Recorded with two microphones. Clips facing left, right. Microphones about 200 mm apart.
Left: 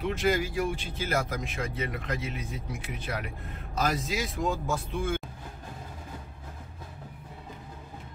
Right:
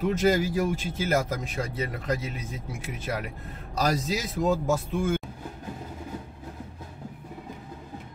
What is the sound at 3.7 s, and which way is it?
Speech, 35° right (ahead or behind).